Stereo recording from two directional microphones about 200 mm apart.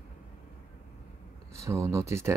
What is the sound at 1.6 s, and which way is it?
Speech, 15° right (ahead or behind).